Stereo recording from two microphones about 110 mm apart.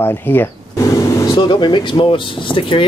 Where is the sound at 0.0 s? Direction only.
20° left (ahead or behind).